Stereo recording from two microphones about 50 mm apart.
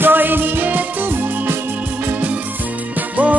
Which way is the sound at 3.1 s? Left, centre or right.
Right.